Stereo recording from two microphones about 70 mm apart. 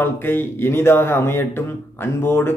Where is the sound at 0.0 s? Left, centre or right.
Left.